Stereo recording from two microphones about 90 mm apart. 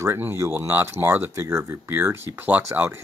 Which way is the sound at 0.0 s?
30° right (ahead or behind).